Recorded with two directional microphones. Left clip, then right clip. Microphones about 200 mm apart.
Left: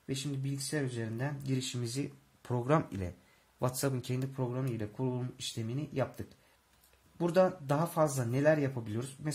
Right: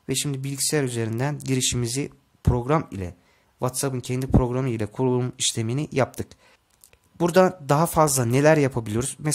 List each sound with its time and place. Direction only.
0.0 s speech: 45° right (ahead or behind); by 4.3 s 30° right (ahead or behind)
4.4 s speech: 45° right (ahead or behind)